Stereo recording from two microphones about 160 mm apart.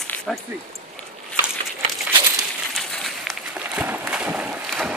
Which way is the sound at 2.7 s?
Centre (ahead or behind).